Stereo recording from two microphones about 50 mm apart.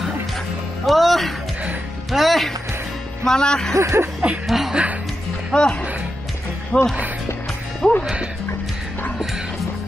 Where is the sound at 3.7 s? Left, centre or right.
Right.